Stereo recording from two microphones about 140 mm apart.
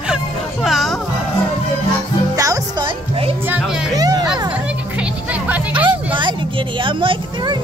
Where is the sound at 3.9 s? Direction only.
25° right (ahead or behind).